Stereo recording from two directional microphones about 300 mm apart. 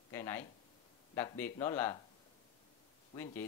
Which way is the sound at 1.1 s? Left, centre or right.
Centre.